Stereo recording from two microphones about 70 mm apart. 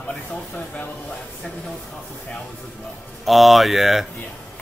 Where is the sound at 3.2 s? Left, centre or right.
Centre.